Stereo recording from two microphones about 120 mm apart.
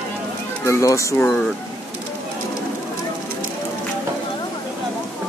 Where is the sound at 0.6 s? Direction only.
25° left (ahead or behind).